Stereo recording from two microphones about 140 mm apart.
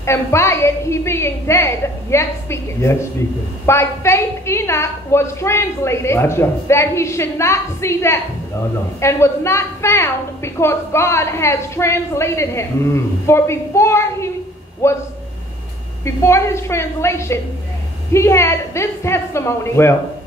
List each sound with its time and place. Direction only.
0.0 s a woman's voice: 20° left (ahead or behind)
16.0 s a woman's voice: 20° left (ahead or behind)